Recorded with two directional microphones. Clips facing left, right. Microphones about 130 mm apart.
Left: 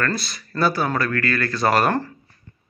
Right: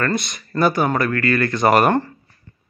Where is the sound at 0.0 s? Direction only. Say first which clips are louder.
Right 3 dB; 20° right (ahead or behind).